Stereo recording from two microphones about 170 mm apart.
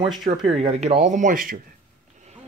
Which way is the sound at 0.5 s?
35° right (ahead or behind).